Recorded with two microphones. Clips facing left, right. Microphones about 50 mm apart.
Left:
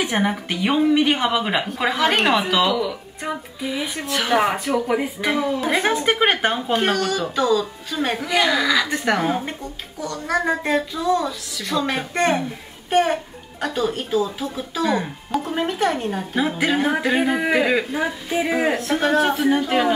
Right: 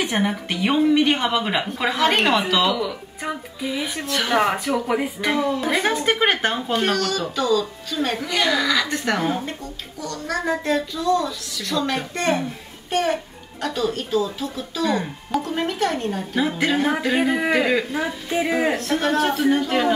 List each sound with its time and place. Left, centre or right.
0.0 s speech: centre
9.9 s speech: centre